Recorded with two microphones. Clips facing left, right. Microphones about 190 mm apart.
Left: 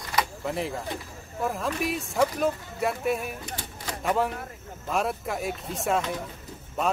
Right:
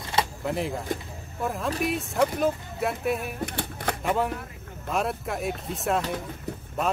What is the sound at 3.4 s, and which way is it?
Typewriter, 65° right (ahead or behind).